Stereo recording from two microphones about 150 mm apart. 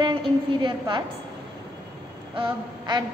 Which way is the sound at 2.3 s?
30° right (ahead or behind).